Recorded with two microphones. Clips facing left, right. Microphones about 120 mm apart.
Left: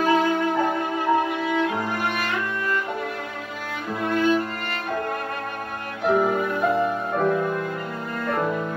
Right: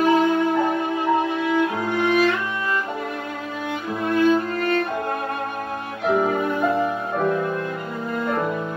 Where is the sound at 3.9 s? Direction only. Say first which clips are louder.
Right 3 dB; centre (ahead or behind).